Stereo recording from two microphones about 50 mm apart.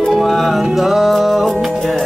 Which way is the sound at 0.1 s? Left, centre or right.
Centre.